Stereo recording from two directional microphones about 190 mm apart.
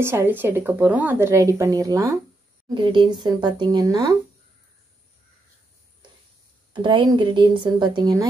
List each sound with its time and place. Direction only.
0.0 s speech: 10° right (ahead or behind)
6.7 s speech: 25° right (ahead or behind)